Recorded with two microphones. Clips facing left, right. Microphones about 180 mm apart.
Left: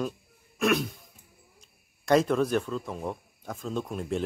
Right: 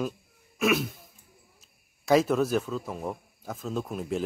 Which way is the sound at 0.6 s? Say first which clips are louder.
Even; centre (ahead or behind).